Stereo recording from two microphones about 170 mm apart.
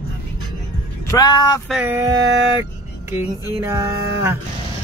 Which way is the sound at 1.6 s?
10° right (ahead or behind).